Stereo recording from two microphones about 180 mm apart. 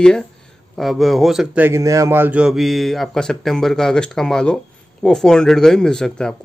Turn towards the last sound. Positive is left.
turn(degrees=5)  # may be behind; listen again after turning